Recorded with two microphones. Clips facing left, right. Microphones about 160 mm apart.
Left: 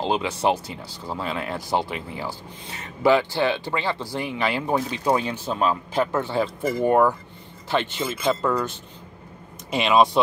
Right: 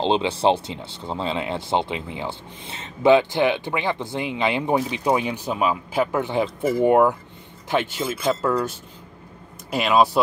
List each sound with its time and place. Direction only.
0.0 s speech: 25° right (ahead or behind); by 8.5 s 5° right (ahead or behind)
9.7 s speech: centre (ahead or behind)